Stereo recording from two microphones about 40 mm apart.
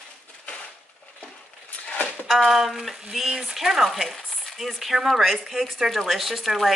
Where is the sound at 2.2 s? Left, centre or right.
Centre.